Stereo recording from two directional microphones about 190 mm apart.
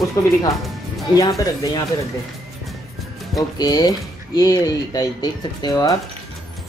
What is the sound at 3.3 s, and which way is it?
Speech, 20° left (ahead or behind).